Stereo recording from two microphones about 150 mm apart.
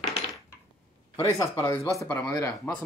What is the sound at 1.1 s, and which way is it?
Speech, 20° left (ahead or behind).